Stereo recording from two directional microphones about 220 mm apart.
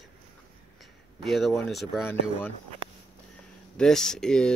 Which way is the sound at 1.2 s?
Centre (ahead or behind).